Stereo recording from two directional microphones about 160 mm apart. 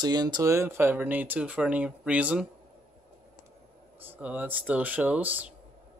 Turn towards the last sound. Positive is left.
turn(degrees=-10)  # may be behind; listen again after turning